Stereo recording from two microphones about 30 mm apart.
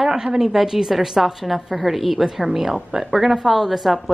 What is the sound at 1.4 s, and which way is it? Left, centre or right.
A woman's voice, centre.